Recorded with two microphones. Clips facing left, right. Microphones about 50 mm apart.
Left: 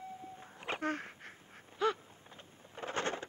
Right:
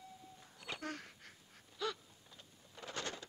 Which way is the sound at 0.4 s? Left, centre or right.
Left.